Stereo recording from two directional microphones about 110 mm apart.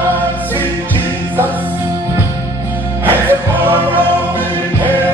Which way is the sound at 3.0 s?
15° right (ahead or behind).